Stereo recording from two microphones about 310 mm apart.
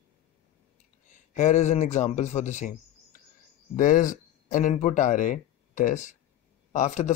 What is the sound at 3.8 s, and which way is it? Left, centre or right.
Speech, left.